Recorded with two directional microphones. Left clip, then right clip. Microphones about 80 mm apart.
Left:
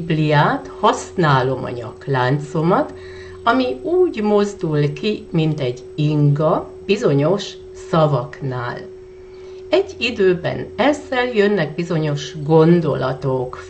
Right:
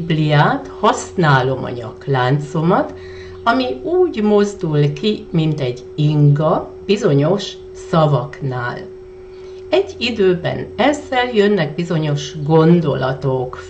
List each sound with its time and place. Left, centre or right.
0.1 s speech: left